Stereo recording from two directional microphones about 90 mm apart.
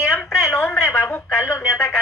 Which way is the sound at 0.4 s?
25° left (ahead or behind).